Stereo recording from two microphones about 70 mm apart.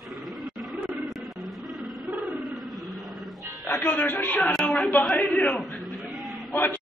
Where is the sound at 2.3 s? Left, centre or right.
Centre.